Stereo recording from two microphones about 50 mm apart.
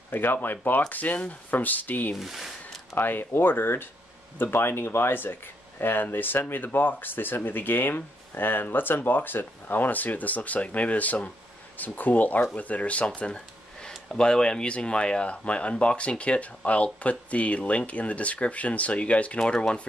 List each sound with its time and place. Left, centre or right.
0.1 s speech: left
2.1 s zipper: centre
3.0 s speech: left
13.3 s speech: centre
19.4 s speech: centre